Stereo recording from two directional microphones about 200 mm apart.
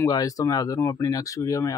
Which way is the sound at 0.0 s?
15° left (ahead or behind).